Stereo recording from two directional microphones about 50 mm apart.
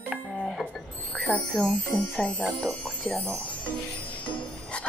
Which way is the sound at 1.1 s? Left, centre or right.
Left.